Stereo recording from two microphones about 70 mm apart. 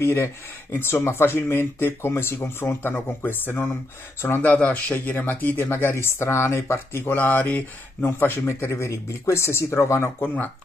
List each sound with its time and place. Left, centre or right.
0.0 s speech: left
7.2 s speech: left